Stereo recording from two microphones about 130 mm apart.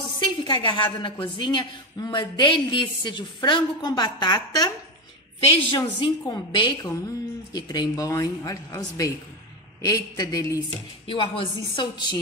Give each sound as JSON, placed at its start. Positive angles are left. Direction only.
{"t": 0.2, "sound": "a woman's voice", "side_deg": 35}
{"t": 10.7, "sound": "a woman's voice", "side_deg": 45}